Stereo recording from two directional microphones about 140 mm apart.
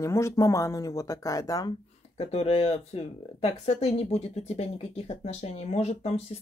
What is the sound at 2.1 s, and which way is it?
Speech, 45° left (ahead or behind).